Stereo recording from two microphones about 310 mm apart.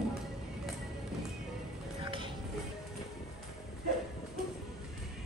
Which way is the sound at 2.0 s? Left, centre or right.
Centre.